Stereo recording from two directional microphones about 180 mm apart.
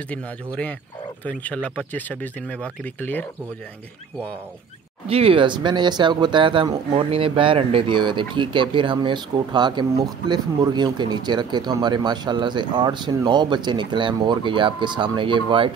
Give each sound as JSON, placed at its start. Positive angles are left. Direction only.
{"t": 1.2, "sound": "speech", "side_deg": 10}
{"t": 5.0, "sound": "speech", "side_deg": -30}